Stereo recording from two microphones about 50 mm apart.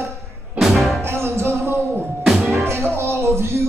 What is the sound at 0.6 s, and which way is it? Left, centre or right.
Music, centre.